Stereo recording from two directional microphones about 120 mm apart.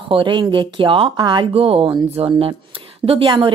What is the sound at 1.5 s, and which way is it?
A woman's voice, 50° right (ahead or behind).